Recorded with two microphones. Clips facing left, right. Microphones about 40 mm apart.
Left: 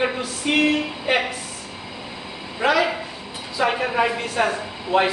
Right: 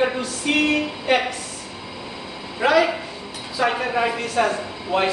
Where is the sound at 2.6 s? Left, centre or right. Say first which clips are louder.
Right 2 dB; centre.